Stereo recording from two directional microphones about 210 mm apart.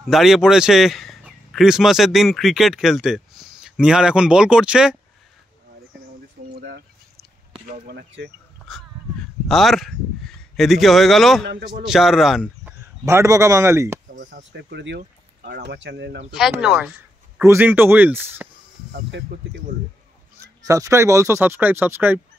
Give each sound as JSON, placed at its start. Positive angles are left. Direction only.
{"t": 0.0, "sound": "speech", "side_deg": 0}
{"t": 7.7, "sound": "speech", "side_deg": -45}
{"t": 9.5, "sound": "speech", "side_deg": 0}
{"t": 11.4, "sound": "speech", "side_deg": -55}
{"t": 11.8, "sound": "speech", "side_deg": 0}
{"t": 13.0, "sound": "speech", "side_deg": -15}
{"t": 14.1, "sound": "a sound", "side_deg": -40}
{"t": 14.5, "sound": "speech", "side_deg": -55}
{"t": 16.6, "sound": "speech", "side_deg": 0}
{"t": 17.4, "sound": "speech", "side_deg": -10}
{"t": 18.9, "sound": "speech", "side_deg": -55}
{"t": 20.3, "sound": "speech", "side_deg": -15}